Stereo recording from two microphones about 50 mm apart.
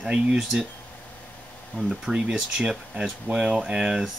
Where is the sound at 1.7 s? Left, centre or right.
Centre.